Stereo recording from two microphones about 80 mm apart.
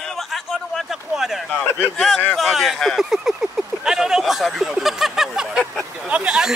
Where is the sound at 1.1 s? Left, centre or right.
Centre.